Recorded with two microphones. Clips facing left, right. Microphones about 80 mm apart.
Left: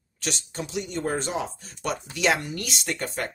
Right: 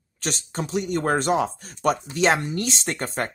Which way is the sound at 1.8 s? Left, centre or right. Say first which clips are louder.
Right 4 dB; right.